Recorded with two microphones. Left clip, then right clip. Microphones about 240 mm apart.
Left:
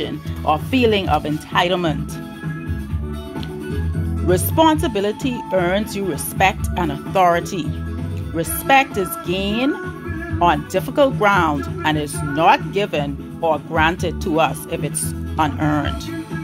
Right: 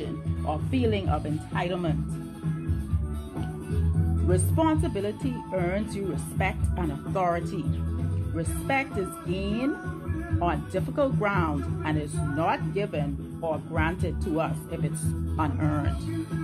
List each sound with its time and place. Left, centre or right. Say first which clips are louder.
0.0 s speech: left 11 dB; left
4.3 s a woman's voice: left 11 dB; centre